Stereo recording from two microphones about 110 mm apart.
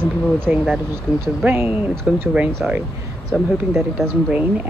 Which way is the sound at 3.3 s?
5° left (ahead or behind).